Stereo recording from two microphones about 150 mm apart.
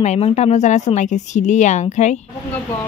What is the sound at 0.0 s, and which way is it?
Speech, 50° left (ahead or behind).